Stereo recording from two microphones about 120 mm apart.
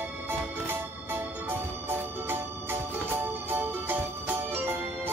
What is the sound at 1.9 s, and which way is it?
Music, 20° right (ahead or behind).